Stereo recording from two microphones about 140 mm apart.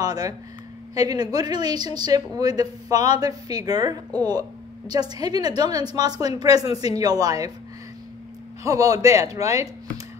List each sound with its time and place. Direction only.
0.0 s a woman's voice: 25° right (ahead or behind)
8.6 s a woman's voice: 25° right (ahead or behind)